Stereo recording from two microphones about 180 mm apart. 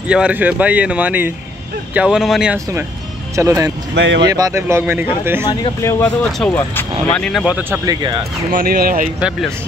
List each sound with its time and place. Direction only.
0.1 s speech: 5° right (ahead or behind)
3.9 s speech: 75° right (ahead or behind)
4.3 s speech: 20° right (ahead or behind)
5.5 s speech: 20° left (ahead or behind); by 7.5 s centre (ahead or behind)
7.8 s speech: 20° right (ahead or behind)
8.5 s speech: 55° right (ahead or behind)